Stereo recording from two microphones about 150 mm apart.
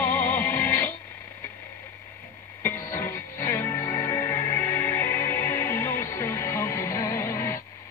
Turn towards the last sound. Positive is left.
turn(degrees=20)  # may be behind; listen again after turning